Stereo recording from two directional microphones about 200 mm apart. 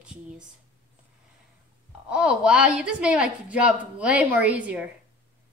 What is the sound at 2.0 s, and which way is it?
A woman's voice, 5° right (ahead or behind).